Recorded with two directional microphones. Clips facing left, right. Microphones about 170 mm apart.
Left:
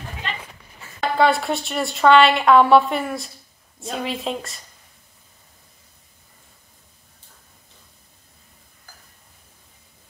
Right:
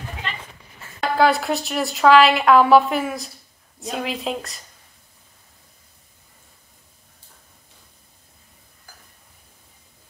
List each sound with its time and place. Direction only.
1.0 s speech: centre (ahead or behind)